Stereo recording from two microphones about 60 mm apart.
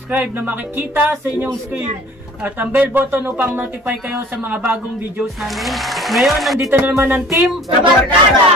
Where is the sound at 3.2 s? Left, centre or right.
Right.